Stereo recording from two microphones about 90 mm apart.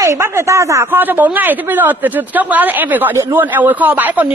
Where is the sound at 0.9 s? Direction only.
20° right (ahead or behind).